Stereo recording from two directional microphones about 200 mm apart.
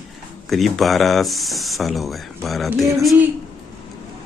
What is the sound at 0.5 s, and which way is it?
Speech, centre (ahead or behind).